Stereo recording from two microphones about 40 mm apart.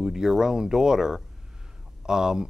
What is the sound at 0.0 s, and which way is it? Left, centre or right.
Speech, centre.